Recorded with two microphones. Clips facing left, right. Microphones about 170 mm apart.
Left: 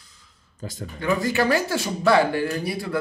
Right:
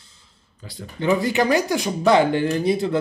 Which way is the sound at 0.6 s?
45° left (ahead or behind).